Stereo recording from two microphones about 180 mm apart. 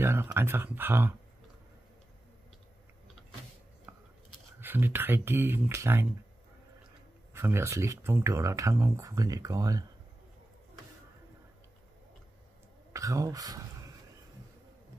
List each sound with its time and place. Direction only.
0.0 s speech: 15° right (ahead or behind)
3.9 s biting: 10° right (ahead or behind)
4.6 s speech: 10° right (ahead or behind)
7.3 s speech: 15° right (ahead or behind)
12.9 s speech: 20° right (ahead or behind)